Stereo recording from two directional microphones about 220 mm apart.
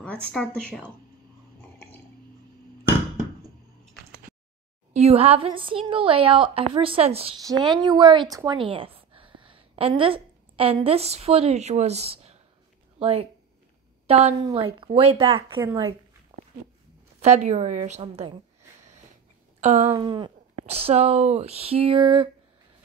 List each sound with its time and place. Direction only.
0.3 s speech: 5° left (ahead or behind)
4.9 s a woman's voice: 30° right (ahead or behind)
17.2 s a woman's voice: 30° right (ahead or behind)
19.6 s speech: 30° right (ahead or behind)